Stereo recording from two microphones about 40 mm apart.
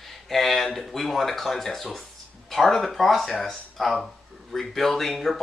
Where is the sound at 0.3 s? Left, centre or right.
Centre.